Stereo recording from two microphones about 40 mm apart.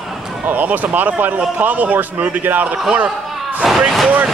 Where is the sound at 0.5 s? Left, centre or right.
Right.